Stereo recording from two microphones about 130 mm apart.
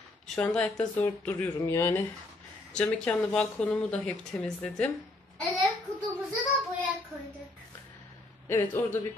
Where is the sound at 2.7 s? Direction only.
5° left (ahead or behind).